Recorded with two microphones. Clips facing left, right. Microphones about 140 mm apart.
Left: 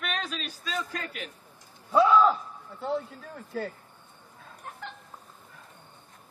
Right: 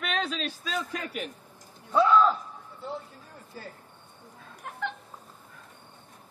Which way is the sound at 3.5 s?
65° left (ahead or behind).